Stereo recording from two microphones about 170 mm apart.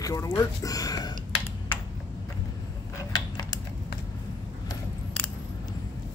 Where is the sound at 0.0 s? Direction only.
20° left (ahead or behind).